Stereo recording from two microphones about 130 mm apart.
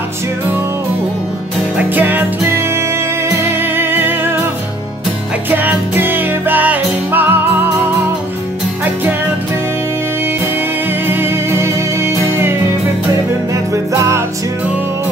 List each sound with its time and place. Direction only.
1.8 s music: 15° right (ahead or behind)
5.5 s music: 15° right (ahead or behind)
11.1 s music: 15° right (ahead or behind)